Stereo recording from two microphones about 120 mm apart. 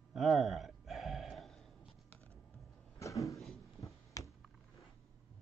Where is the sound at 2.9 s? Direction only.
25° left (ahead or behind).